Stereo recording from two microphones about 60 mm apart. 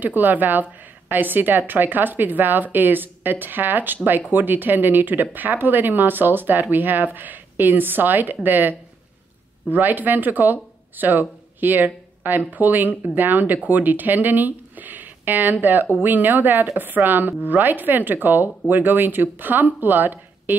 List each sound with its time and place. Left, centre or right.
0.0 s speech: right